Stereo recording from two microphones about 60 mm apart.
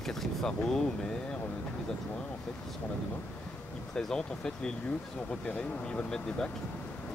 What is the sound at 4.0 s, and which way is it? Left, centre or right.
Speech, centre.